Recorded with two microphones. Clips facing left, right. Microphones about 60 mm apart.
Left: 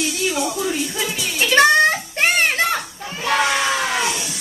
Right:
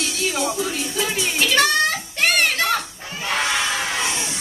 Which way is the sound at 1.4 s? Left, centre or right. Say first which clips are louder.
Left 6 dB; left.